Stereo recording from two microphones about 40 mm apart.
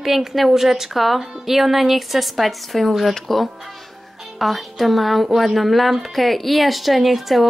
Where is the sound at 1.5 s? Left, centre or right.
Centre.